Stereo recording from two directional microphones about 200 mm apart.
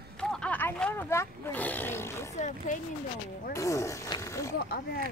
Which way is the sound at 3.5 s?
15° left (ahead or behind).